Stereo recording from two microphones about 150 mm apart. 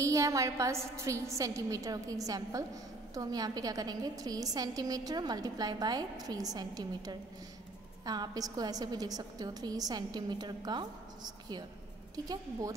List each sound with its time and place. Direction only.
0.0 s a woman's voice: 20° right (ahead or behind)